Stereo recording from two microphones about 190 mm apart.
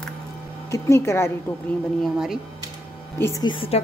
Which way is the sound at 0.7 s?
15° left (ahead or behind).